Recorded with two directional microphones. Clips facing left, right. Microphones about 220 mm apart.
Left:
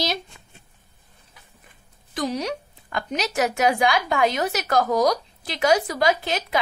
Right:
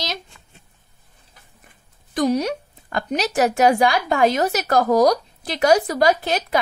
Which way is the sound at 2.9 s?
35° right (ahead or behind).